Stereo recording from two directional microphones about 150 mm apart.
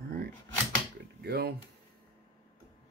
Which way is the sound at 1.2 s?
90° right.